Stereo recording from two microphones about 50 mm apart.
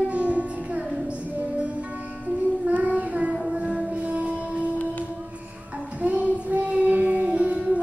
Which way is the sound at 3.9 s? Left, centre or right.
Right.